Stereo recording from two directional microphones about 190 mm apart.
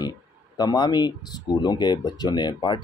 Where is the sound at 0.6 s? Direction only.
20° left (ahead or behind).